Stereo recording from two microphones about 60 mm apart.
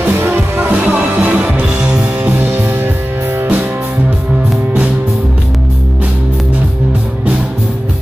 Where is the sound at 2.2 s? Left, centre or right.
Right.